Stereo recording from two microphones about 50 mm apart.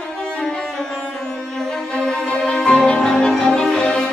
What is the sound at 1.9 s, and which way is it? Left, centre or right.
Music, centre.